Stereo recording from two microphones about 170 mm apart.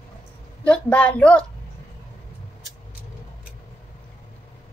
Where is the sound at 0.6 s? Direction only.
10° left (ahead or behind).